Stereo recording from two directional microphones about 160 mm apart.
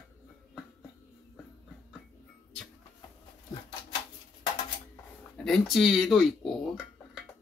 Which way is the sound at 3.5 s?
25° left (ahead or behind).